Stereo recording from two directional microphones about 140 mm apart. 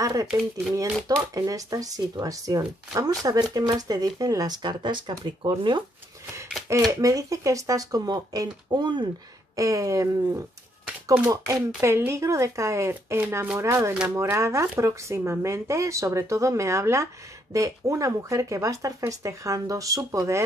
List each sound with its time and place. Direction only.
0.0 s speech: 25° right (ahead or behind)
6.9 s speech: 25° right (ahead or behind)
11.8 s speech: 20° right (ahead or behind)